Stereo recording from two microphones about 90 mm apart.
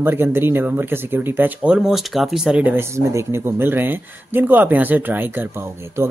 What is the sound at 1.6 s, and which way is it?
Speech, 5° right (ahead or behind).